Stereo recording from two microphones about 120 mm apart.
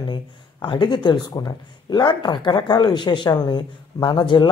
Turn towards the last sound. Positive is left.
turn(degrees=40)  # may be behind; listen again after turning